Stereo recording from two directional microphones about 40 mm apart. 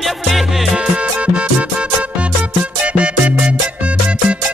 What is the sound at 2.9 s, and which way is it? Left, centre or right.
Music, right.